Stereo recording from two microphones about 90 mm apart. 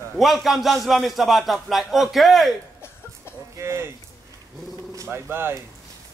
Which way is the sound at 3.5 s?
30° right (ahead or behind).